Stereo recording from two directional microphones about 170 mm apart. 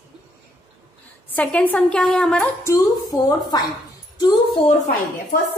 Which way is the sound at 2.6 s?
20° left (ahead or behind).